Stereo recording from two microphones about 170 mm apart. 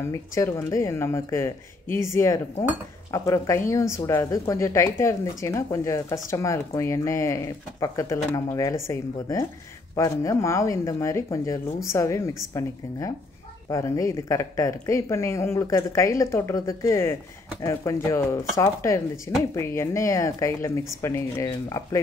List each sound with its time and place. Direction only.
0.0 s speech: 15° left (ahead or behind)